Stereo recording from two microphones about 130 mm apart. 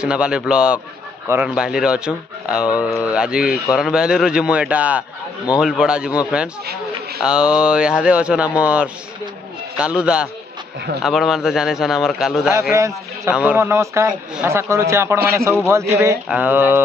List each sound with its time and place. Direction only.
0.0 s a man's voice: 5° right (ahead or behind)
12.7 s a man's voice: 20° right (ahead or behind)
13.3 s a man's voice: 10° right (ahead or behind)
16.3 s speech: 10° right (ahead or behind)